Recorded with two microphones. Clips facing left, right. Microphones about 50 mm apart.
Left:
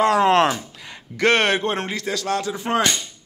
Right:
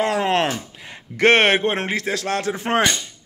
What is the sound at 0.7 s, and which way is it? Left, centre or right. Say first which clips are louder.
Speech: right 2 dB; right.